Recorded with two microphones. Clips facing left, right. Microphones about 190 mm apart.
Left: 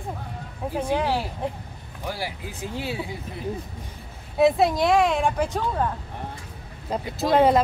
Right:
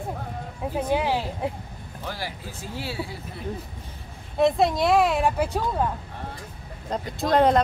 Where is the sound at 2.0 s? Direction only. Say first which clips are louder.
Left 3 dB; 10° left (ahead or behind).